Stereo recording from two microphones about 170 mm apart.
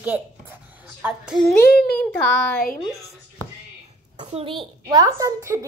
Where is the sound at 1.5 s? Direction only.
5° left (ahead or behind).